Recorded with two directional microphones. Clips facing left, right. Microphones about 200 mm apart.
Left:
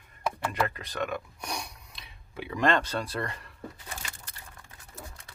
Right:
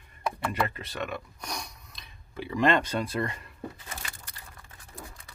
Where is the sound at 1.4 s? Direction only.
10° left (ahead or behind).